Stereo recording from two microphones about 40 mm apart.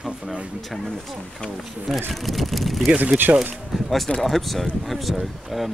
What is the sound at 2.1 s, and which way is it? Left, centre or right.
Speech, centre.